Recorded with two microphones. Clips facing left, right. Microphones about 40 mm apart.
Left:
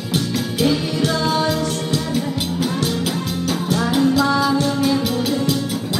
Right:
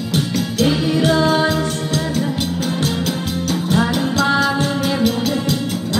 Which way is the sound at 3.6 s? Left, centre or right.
Right.